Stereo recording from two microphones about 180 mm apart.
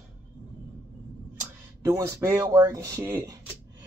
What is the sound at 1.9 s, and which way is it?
Speech, 20° right (ahead or behind).